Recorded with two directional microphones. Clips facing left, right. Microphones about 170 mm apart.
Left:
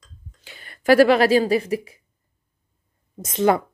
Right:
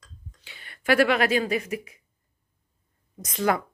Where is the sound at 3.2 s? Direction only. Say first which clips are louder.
Left 6 dB; 25° left (ahead or behind).